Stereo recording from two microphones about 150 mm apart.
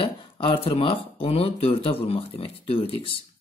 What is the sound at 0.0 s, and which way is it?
A woman's voice, 35° left (ahead or behind).